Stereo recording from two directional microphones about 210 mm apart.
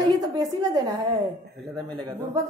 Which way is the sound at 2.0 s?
15° right (ahead or behind).